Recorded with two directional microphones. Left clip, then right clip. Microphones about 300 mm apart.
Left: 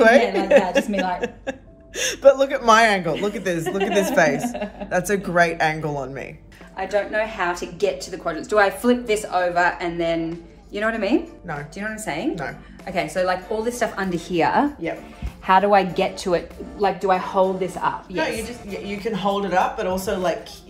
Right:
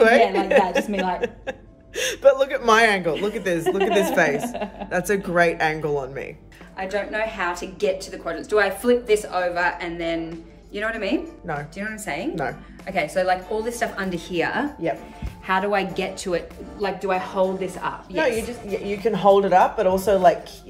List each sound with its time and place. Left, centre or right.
0.0 s a woman's voice: centre
3.6 s a woman's voice: centre
18.1 s speech: right